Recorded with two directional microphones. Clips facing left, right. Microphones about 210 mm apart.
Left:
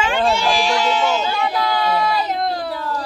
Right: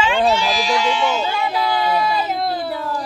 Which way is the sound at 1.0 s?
10° right (ahead or behind).